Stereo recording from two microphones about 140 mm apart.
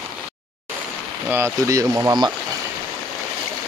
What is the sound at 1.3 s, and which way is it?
Speech, 20° right (ahead or behind).